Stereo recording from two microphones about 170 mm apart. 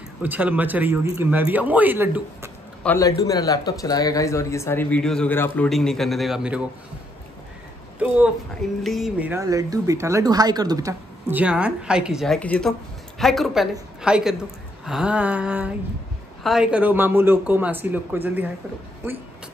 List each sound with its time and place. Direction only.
0.2 s speech: 10° right (ahead or behind)
3.0 s a woman's voice: 20° left (ahead or behind); by 6.7 s 5° right (ahead or behind)
8.8 s a woman's voice: centre (ahead or behind)
9.3 s a woman's voice: 20° right (ahead or behind)